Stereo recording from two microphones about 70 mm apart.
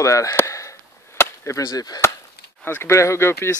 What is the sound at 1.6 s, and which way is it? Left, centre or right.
Speech, left.